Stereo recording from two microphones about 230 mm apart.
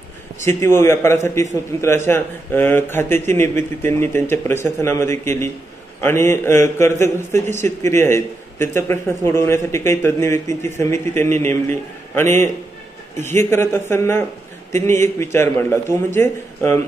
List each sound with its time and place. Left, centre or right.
0.4 s a man's voice: centre